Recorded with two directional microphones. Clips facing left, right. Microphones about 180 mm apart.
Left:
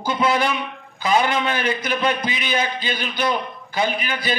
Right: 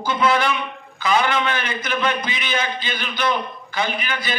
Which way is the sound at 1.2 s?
40° left (ahead or behind).